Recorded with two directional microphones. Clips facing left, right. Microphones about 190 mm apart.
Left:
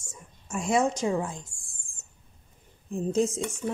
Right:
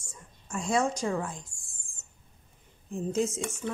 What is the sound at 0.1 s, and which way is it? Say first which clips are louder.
A woman's voice: left 2 dB; 20° left (ahead or behind).